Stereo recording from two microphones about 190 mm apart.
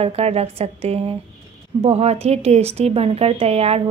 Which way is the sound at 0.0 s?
30° right (ahead or behind).